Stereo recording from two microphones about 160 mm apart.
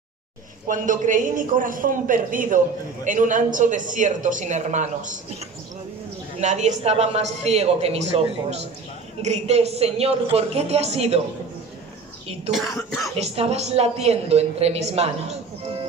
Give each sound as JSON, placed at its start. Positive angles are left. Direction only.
{"t": 0.7, "sound": "a man's voice", "side_deg": -55}
{"t": 6.4, "sound": "a man's voice", "side_deg": -45}
{"t": 12.7, "sound": "speech", "side_deg": 20}
{"t": 13.2, "sound": "a woman's voice", "side_deg": -40}